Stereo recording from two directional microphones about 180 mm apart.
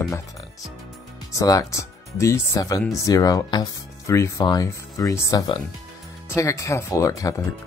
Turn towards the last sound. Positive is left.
turn(degrees=20)  # may be behind; listen again after turning